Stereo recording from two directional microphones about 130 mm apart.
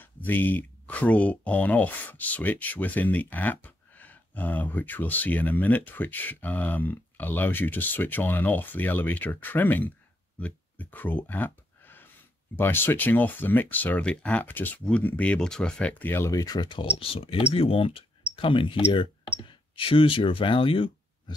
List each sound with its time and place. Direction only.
0.0 s speech: 15° left (ahead or behind); by 16.8 s 35° left (ahead or behind)
17.0 s speech: 45° left (ahead or behind)